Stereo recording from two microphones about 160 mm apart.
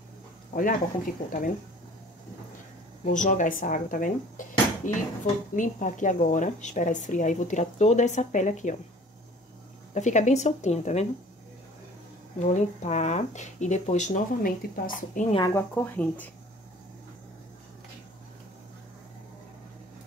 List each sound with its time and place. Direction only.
0.5 s speech: 55° left (ahead or behind)
3.1 s a woman's voice: 55° left (ahead or behind)
9.9 s a woman's voice: 50° left (ahead or behind)
12.4 s a woman's voice: 50° left (ahead or behind)
15.5 s speech: 10° left (ahead or behind)